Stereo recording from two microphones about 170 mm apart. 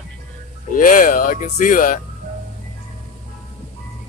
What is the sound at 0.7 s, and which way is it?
Speech, 50° left (ahead or behind).